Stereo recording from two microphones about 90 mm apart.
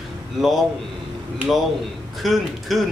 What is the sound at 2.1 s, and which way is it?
Speech, centre (ahead or behind).